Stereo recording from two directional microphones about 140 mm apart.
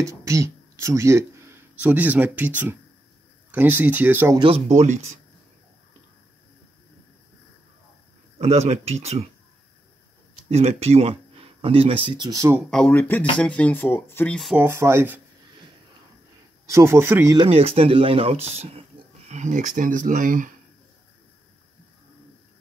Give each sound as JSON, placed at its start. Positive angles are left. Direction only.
{"t": 0.0, "sound": "speech", "side_deg": -20}
{"t": 4.6, "sound": "speech", "side_deg": -55}
{"t": 8.4, "sound": "speech", "side_deg": -50}
{"t": 10.5, "sound": "speech", "side_deg": -50}
{"t": 12.2, "sound": "speech", "side_deg": -25}
{"t": 12.6, "sound": "speech", "side_deg": 5}
{"t": 14.5, "sound": "speech", "side_deg": -15}
{"t": 16.6, "sound": "speech", "side_deg": -20}
{"t": 17.4, "sound": "speech", "side_deg": -45}